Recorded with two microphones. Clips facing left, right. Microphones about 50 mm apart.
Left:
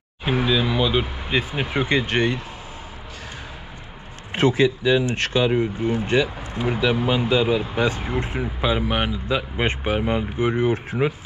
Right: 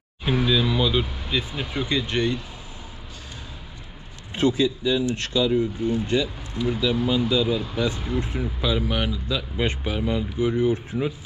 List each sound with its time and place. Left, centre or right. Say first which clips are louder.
0.2 s speech: left 1 dB; centre; by 2.4 s left
4.3 s speech: left 3 dB; left